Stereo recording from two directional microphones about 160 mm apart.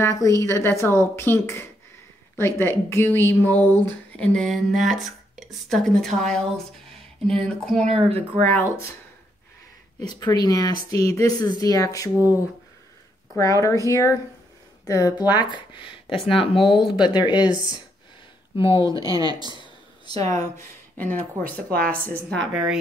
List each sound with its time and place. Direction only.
0.0 s speech: 20° left (ahead or behind)
3.8 s a sound: 5° left (ahead or behind)
4.9 s speech: centre (ahead or behind)
7.2 s a sound: centre (ahead or behind)
7.8 s speech: 45° right (ahead or behind)
8.5 s speech: 15° left (ahead or behind)
10.0 s speech: 25° left (ahead or behind)
13.4 s speech: 20° left (ahead or behind)
16.5 s a sound: centre (ahead or behind)
17.0 s speech: 25° left (ahead or behind)
18.6 s speech: 35° left (ahead or behind)
18.9 s speech: 20° right (ahead or behind)
20.1 s speech: 20° left (ahead or behind)
22.5 s a sound: 5° right (ahead or behind)